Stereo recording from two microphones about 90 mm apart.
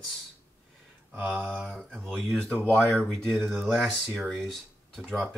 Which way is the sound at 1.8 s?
5° left (ahead or behind).